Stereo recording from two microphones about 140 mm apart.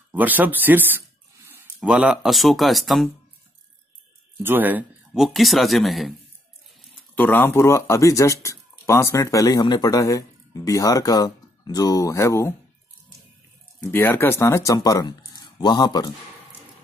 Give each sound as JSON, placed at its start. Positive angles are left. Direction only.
{"t": 0.1, "sound": "speech", "side_deg": -10}
{"t": 4.4, "sound": "speech", "side_deg": -15}
{"t": 5.1, "sound": "speech", "side_deg": 0}
{"t": 7.2, "sound": "speech", "side_deg": 15}
{"t": 13.8, "sound": "speech", "side_deg": 15}